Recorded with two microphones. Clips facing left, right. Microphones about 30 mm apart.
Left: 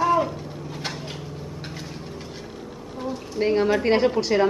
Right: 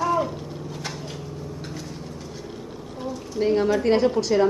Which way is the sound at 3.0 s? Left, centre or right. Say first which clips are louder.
Even; left.